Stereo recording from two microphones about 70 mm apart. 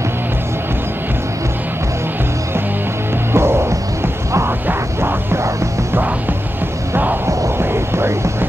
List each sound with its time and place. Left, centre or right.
3.3 s music: right
7.2 s music: right